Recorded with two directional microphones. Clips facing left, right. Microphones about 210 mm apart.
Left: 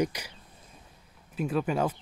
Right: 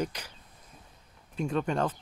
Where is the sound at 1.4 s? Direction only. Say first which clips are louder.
Left 1 dB; 5° left (ahead or behind).